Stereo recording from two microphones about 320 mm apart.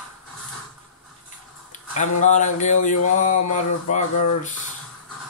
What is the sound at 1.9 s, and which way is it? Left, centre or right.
Speech, left.